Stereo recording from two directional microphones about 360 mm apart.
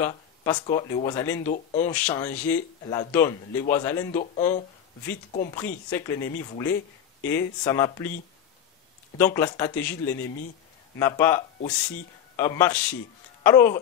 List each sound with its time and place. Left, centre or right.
0.0 s a man's voice: centre
1.5 s speech: centre
2.0 s a man's voice: centre
4.1 s speech: centre
5.9 s a man's voice: centre
9.2 s a man's voice: centre